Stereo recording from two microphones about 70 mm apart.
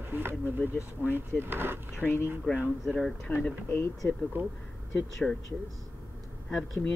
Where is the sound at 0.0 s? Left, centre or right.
Right.